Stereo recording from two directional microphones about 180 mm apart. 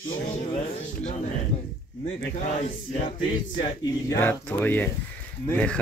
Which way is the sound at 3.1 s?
25° left (ahead or behind).